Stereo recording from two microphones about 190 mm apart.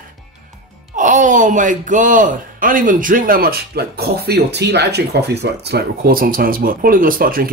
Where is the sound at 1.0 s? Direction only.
40° right (ahead or behind).